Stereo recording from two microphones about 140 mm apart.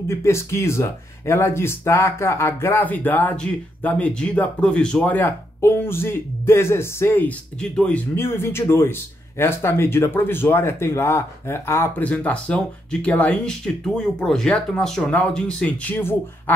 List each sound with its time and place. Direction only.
0.1 s speech: 20° left (ahead or behind)